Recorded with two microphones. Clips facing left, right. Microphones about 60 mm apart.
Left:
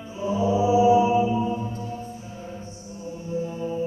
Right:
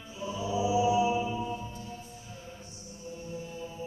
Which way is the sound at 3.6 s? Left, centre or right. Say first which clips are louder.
Left 12 dB; left.